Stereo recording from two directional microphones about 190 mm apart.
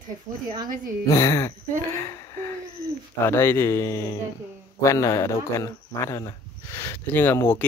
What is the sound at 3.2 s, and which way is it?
Speech, 10° left (ahead or behind).